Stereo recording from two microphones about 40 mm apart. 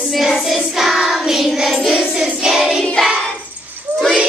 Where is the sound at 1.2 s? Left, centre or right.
Centre.